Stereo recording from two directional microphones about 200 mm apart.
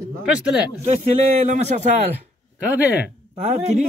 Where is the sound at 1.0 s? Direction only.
35° right (ahead or behind).